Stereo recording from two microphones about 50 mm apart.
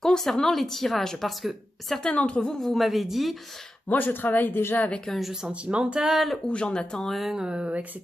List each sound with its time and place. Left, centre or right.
0.0 s speech: centre
2.0 s a woman's voice: left
2.6 s speech: centre
3.9 s speech: left
4.7 s a woman's voice: left
5.0 s speech: centre
5.5 s speech: right
5.9 s speech: centre
6.4 s speech: centre
7.1 s speech: centre
7.3 s speech: centre